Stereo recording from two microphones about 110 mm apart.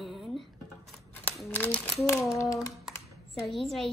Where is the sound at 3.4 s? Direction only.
Centre (ahead or behind).